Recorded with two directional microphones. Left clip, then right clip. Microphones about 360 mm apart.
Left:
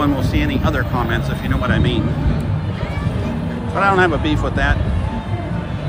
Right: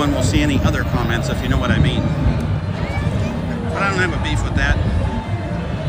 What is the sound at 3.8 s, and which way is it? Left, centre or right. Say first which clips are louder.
Speech: left 5 dB; centre.